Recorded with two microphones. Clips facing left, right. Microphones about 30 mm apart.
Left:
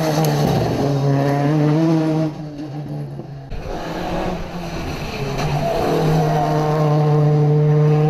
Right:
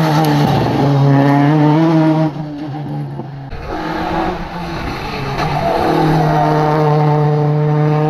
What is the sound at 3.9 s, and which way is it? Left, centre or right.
Vehicle, right.